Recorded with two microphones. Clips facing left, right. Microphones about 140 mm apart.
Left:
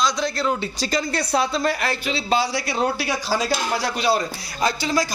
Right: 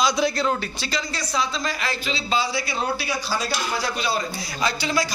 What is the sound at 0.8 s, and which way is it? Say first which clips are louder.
Speech: left 5 dB; 50° left (ahead or behind).